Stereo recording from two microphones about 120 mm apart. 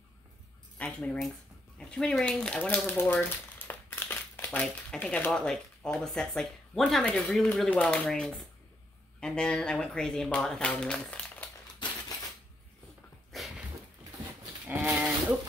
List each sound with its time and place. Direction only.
0.7 s speech: 10° left (ahead or behind)
2.9 s crumpling: 15° left (ahead or behind)
4.5 s speech: 5° left (ahead or behind)
13.3 s a sound: centre (ahead or behind)
14.7 s livestock: 10° right (ahead or behind)